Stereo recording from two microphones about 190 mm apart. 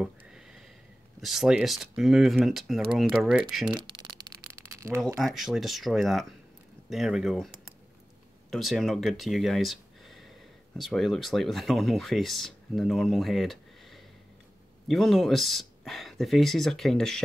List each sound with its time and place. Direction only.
0.0 s sniff: 5° right (ahead or behind)
1.2 s speech: centre (ahead or behind)
3.8 s a sound: 25° right (ahead or behind)
5.1 s speech: centre (ahead or behind)